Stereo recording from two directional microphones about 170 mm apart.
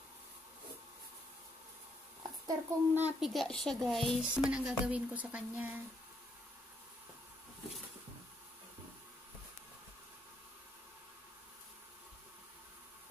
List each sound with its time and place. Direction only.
2.4 s a child's voice: 10° right (ahead or behind)
4.1 s music: 5° right (ahead or behind)